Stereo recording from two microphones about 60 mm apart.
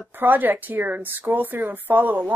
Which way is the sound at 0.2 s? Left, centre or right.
Right.